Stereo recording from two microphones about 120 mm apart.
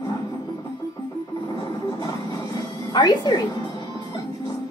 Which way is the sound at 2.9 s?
30° left (ahead or behind).